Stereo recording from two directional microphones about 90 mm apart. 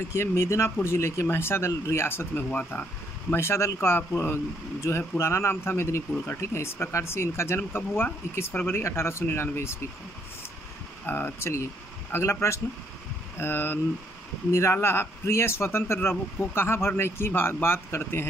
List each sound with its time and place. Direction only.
0.1 s speech: 30° left (ahead or behind)
11.1 s speech: 20° left (ahead or behind)